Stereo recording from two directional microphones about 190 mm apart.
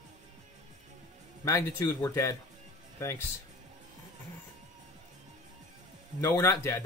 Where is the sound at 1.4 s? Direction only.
15° left (ahead or behind).